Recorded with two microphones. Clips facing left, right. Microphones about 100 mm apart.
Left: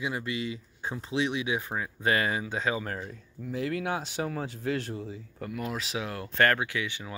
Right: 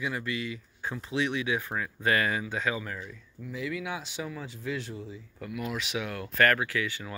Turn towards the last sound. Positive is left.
turn(degrees=20)  # may be behind; listen again after turning